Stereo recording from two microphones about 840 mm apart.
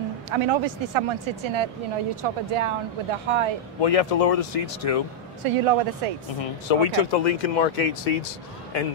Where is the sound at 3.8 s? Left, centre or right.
Left.